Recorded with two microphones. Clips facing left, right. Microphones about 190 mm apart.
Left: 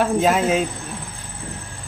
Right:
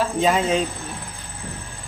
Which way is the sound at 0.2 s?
5° left (ahead or behind).